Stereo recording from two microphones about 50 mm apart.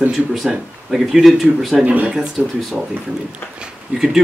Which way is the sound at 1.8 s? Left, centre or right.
Right.